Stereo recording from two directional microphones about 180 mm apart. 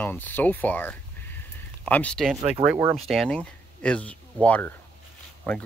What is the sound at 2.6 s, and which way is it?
Speech, 10° right (ahead or behind).